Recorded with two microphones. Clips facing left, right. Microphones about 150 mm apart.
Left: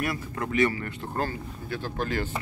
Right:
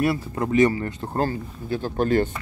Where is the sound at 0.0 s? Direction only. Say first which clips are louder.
Right 7 dB; 30° right (ahead or behind).